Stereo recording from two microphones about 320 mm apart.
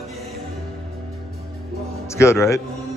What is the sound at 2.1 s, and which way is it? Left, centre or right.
Speech, centre.